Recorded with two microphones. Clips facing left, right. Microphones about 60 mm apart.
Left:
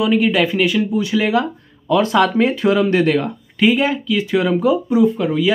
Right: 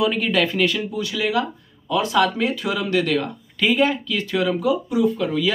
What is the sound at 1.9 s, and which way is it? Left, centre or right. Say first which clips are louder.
Speech: left 4 dB; left.